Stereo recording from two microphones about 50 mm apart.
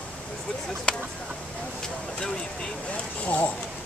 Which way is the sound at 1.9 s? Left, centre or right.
Left.